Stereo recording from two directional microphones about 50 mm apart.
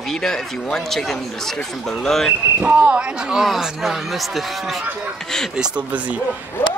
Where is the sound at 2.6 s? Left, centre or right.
Right.